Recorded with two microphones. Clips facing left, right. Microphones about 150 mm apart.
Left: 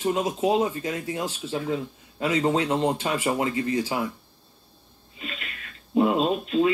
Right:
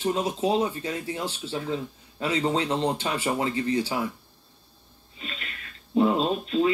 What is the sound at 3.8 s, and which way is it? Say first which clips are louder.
Speech: left 1 dB; 25° left (ahead or behind).